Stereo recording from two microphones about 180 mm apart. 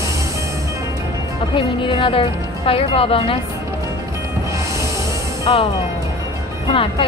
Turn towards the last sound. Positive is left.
turn(degrees=30)  # may be behind; listen again after turning